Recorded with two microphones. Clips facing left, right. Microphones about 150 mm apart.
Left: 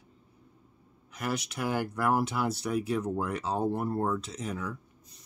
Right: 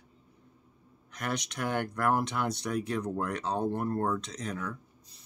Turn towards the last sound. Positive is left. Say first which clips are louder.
# left 1 dB
turn(degrees=5)  # may be behind; listen again after turning